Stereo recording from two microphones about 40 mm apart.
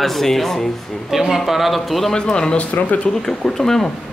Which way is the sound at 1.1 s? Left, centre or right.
Centre.